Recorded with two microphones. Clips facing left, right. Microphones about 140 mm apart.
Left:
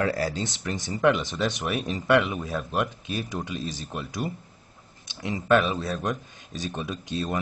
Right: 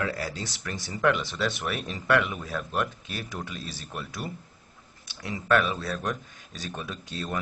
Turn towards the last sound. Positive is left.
turn(degrees=20)  # may be behind; listen again after turning